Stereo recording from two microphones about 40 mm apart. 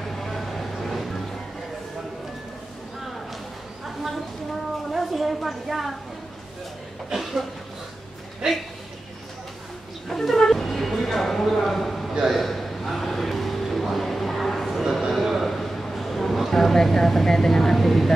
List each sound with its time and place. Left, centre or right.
0.0 s vehicle: centre
0.8 s music: centre
3.8 s a sound: centre
4.9 s a woman's voice: centre
8.4 s speech: right
10.0 s a sound: centre